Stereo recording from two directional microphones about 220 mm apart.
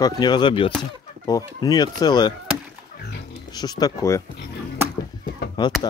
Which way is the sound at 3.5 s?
15° left (ahead or behind).